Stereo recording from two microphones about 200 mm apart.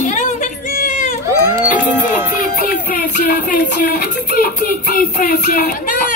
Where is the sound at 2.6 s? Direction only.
45° left (ahead or behind).